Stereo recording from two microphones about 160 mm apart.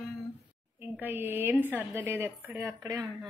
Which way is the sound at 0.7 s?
10° right (ahead or behind).